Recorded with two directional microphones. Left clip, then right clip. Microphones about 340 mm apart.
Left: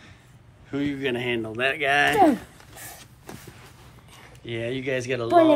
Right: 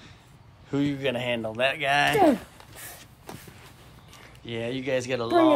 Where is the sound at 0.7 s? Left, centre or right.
Centre.